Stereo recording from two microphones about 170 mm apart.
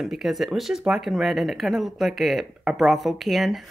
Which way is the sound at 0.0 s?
Centre (ahead or behind).